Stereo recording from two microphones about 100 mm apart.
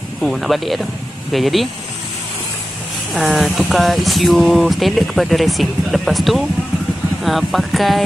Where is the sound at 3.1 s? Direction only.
Centre (ahead or behind).